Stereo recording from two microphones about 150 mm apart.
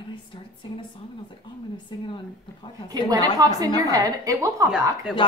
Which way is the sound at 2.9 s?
25° right (ahead or behind).